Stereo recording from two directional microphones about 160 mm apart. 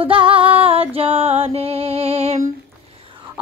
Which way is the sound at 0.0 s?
35° right (ahead or behind).